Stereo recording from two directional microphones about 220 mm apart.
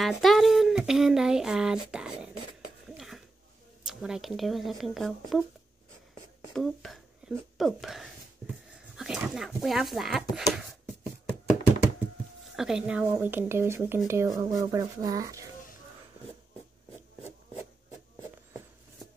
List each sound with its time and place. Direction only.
0.0 s speech: centre (ahead or behind)
2.9 s a sound: centre (ahead or behind)
3.8 s speech: centre (ahead or behind)
6.5 s speech: centre (ahead or behind)
12.5 s speech: 5° right (ahead or behind)